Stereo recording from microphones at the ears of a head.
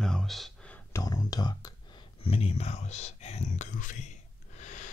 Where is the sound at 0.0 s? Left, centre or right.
Centre.